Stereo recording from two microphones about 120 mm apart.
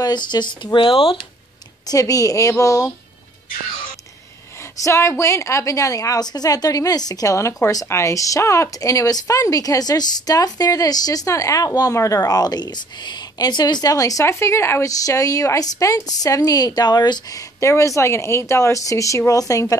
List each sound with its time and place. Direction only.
0.0 s speech: 35° left (ahead or behind)
1.9 s speech: 30° left (ahead or behind)
4.8 s speech: 25° left (ahead or behind)